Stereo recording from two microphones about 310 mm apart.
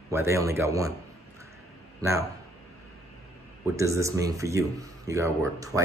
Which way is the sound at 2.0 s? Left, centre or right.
Centre.